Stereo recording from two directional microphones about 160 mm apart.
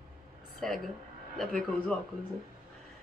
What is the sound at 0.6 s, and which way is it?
A woman's voice, centre (ahead or behind).